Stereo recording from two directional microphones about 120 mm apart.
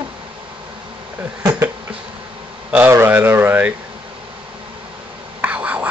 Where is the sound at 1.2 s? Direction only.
20° right (ahead or behind).